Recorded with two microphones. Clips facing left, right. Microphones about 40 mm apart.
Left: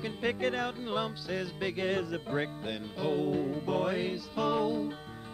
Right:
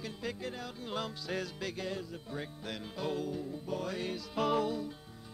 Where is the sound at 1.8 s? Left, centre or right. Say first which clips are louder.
Left 8 dB; left.